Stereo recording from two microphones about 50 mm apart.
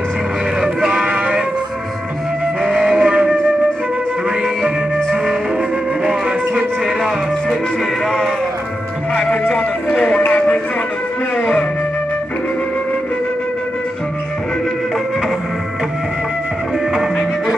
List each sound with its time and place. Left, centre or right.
0.6 s music: centre
2.6 s music: centre
5.1 s music: centre
6.0 s music: right
9.5 s a sound: centre
11.3 s music: left